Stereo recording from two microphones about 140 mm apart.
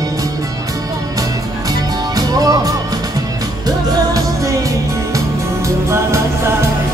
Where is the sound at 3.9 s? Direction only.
25° right (ahead or behind).